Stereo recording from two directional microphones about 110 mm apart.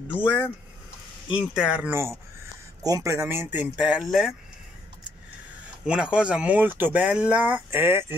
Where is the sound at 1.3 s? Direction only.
10° right (ahead or behind).